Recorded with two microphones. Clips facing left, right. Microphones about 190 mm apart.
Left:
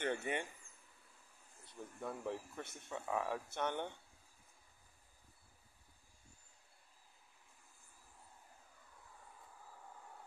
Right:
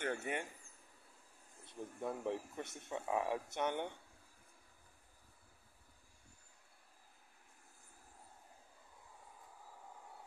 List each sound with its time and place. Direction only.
0.0 s speech: 5° right (ahead or behind)
1.6 s speech: 20° right (ahead or behind)